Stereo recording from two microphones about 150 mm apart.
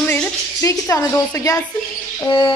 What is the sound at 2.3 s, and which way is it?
Bird, 35° left (ahead or behind).